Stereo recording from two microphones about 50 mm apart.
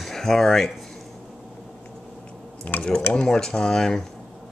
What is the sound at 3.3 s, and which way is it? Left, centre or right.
Speech, centre.